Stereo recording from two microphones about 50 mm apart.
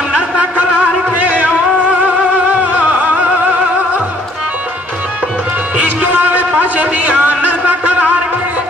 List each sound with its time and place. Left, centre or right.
1.1 s music: right
5.8 s music: right
6.8 s a sound: right